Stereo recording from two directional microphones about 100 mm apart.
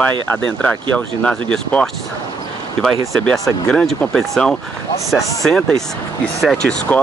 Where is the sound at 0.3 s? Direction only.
15° left (ahead or behind).